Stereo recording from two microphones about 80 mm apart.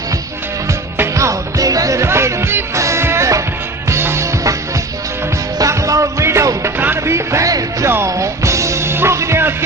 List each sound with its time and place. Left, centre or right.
1.1 s music: right
5.6 s music: right